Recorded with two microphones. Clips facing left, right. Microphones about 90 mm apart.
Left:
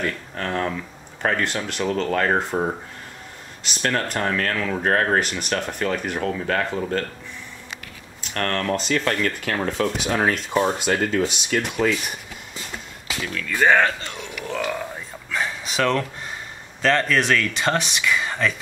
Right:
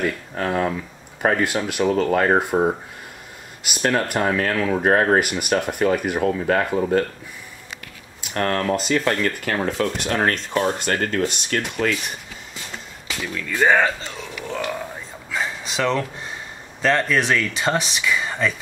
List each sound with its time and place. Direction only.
0.0 s speech: 10° right (ahead or behind)
8.2 s speech: 10° right (ahead or behind)
13.2 s speech: 15° right (ahead or behind)